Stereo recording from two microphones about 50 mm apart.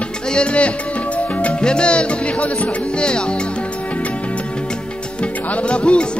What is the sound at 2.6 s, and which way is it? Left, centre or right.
Speech, centre.